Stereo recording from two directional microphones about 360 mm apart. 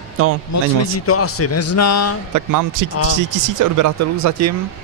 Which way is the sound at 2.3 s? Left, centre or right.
Right.